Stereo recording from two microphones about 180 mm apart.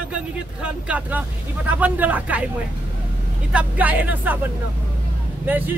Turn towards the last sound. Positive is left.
turn(degrees=-10)  # may be behind; listen again after turning